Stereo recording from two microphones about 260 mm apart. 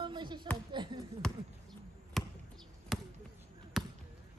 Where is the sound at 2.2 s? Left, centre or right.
Centre.